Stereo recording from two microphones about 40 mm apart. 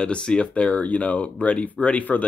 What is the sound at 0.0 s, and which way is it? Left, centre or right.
Speech, left.